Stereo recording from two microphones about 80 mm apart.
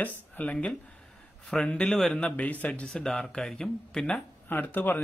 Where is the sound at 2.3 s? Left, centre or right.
Centre.